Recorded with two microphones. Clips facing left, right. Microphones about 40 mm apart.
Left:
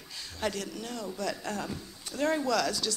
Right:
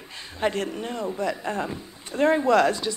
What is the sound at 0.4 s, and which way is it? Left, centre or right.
A man's voice, right.